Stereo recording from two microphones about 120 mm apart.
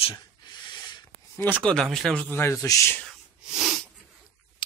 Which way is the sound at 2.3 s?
25° left (ahead or behind).